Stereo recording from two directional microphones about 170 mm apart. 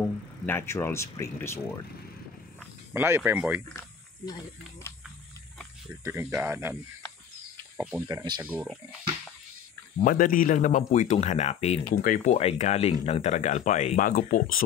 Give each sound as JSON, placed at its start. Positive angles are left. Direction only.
{"t": 0.5, "sound": "speech", "side_deg": 15}
{"t": 2.9, "sound": "speech", "side_deg": -15}
{"t": 6.0, "sound": "speech", "side_deg": -15}
{"t": 7.7, "sound": "a sound", "side_deg": -5}
{"t": 8.1, "sound": "speech", "side_deg": -25}
{"t": 8.4, "sound": "speech", "side_deg": -10}
{"t": 10.0, "sound": "speech", "side_deg": 55}
{"t": 11.9, "sound": "speech", "side_deg": 55}
{"t": 12.4, "sound": "speech", "side_deg": 40}